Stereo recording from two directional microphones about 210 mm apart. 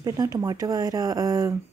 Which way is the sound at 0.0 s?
15° right (ahead or behind).